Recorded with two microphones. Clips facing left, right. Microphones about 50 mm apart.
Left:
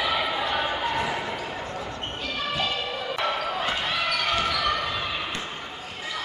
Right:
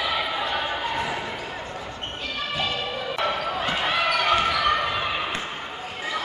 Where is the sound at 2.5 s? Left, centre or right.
Centre.